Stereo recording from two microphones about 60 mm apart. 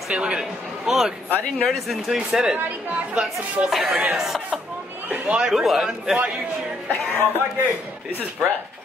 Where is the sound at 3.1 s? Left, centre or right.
Centre.